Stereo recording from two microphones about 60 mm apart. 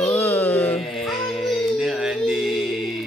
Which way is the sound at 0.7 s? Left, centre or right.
Centre.